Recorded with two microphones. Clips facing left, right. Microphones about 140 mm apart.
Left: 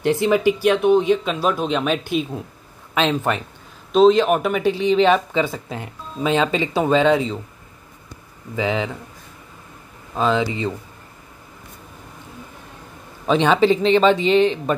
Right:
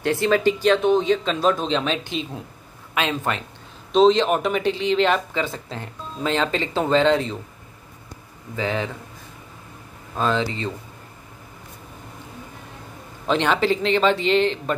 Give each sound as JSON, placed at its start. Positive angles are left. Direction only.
{"t": 0.0, "sound": "speech", "side_deg": 15}
{"t": 3.9, "sound": "speech", "side_deg": 5}
{"t": 8.5, "sound": "speech", "side_deg": 15}
{"t": 10.1, "sound": "speech", "side_deg": 10}
{"t": 13.3, "sound": "speech", "side_deg": 15}